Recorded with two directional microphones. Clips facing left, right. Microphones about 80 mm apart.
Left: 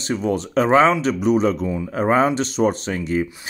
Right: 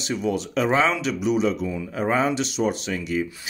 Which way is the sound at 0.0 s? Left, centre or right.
Left.